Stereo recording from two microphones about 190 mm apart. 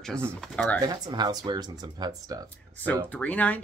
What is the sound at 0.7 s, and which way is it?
Speech, 20° right (ahead or behind).